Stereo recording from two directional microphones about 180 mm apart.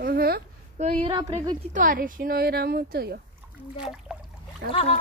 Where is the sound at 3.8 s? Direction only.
5° right (ahead or behind).